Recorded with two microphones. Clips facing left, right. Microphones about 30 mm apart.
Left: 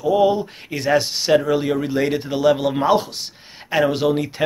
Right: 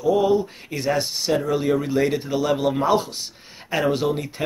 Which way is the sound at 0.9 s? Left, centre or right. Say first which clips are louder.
Left 5 dB; left.